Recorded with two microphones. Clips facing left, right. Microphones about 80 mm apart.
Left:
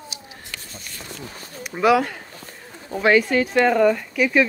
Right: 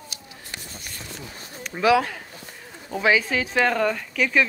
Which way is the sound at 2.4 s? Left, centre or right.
Left.